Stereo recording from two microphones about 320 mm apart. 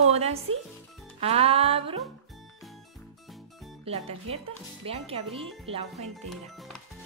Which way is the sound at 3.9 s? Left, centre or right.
Centre.